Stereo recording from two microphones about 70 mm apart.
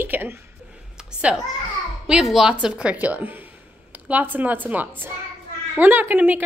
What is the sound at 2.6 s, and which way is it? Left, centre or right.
Speech, centre.